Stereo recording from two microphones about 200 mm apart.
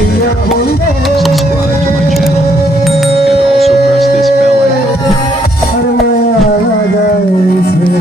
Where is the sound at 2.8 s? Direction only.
Centre (ahead or behind).